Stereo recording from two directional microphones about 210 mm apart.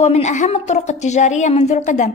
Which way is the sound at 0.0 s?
35° left (ahead or behind).